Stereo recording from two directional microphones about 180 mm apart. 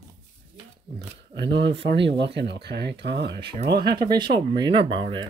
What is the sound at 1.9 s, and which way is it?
Speech, 75° right (ahead or behind).